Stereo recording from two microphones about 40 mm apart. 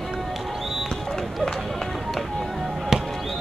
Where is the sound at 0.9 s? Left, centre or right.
Centre.